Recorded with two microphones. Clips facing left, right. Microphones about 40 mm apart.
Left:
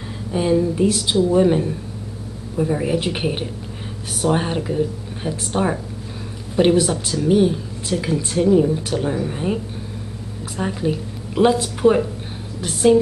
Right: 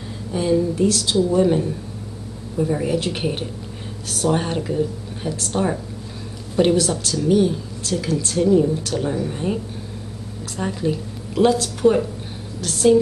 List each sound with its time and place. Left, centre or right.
0.3 s a woman's voice: centre
10.6 s a woman's voice: centre